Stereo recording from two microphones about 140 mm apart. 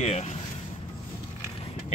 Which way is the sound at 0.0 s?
50° left (ahead or behind).